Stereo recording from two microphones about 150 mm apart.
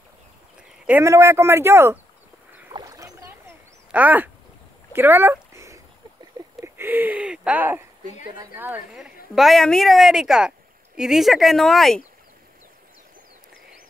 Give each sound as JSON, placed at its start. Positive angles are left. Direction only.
{"t": 0.8, "sound": "speech", "side_deg": -15}
{"t": 2.7, "sound": "a sound", "side_deg": -20}
{"t": 6.6, "sound": "a woman's voice", "side_deg": -15}